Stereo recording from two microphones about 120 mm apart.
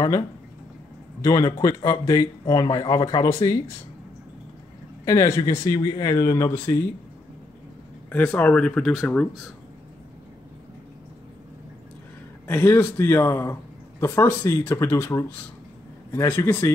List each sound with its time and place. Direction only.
1.2 s speech: 30° left (ahead or behind)
5.0 s a man's voice: 25° left (ahead or behind)
8.1 s speech: 15° left (ahead or behind)
12.4 s a man's voice: 15° left (ahead or behind)